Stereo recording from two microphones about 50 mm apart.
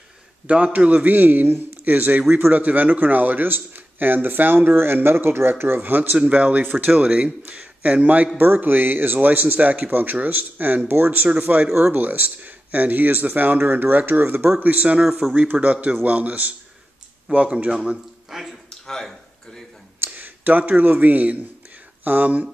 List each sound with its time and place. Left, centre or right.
0.7 s speech: right
5.8 s speech: right
6.9 s a man's voice: right
8.4 s a man's voice: right
15.0 s speech: centre
15.3 s a man's voice: right
18.3 s speech: centre
18.9 s a sound: centre
20.1 s speech: right